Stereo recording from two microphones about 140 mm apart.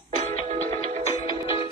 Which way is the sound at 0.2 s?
60° right (ahead or behind).